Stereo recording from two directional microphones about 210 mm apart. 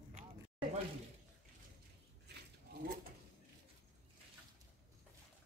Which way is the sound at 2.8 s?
45° right (ahead or behind).